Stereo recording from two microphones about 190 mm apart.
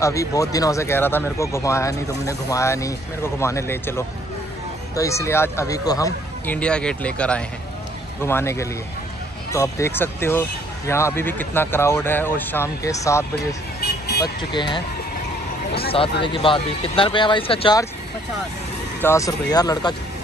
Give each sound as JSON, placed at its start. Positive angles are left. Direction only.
{"t": 0.0, "sound": "speech", "side_deg": 15}
{"t": 13.7, "sound": "vehicle", "side_deg": 55}
{"t": 14.2, "sound": "speech", "side_deg": 25}
{"t": 15.9, "sound": "speech", "side_deg": 25}
{"t": 18.9, "sound": "speech", "side_deg": 15}